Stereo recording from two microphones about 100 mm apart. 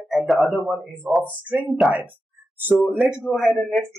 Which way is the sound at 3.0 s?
5° right (ahead or behind).